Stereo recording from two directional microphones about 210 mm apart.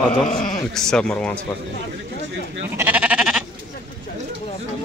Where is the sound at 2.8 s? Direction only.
5° right (ahead or behind).